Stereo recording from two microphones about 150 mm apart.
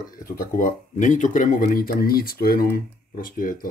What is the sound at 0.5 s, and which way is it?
Speech, 65° left (ahead or behind).